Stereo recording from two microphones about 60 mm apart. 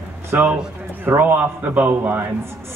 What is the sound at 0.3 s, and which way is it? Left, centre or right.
A man's voice, right.